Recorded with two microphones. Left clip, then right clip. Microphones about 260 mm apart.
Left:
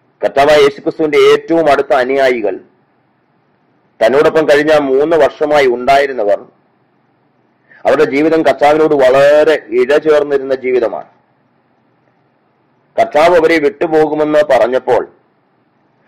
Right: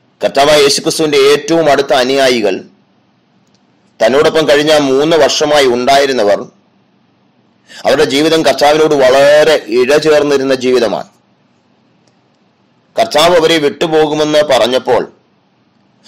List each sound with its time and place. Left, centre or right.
0.2 s a man's voice: right
4.0 s a man's voice: right
7.7 s a man's voice: right
10.6 s speech: right
12.9 s a man's voice: right